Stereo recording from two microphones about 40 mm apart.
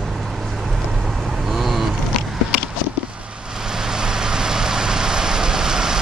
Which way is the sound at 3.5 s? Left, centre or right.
Centre.